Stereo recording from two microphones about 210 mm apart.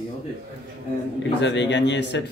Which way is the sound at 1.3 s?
55° left (ahead or behind).